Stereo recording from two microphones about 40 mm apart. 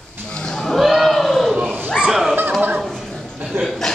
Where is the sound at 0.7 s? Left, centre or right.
Centre.